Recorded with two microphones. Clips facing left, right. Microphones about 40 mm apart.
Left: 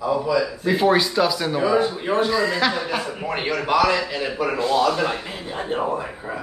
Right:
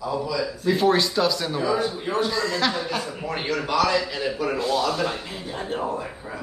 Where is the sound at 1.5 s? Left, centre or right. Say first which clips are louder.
Left 4 dB; left.